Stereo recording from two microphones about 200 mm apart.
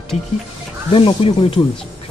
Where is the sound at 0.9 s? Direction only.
30° left (ahead or behind).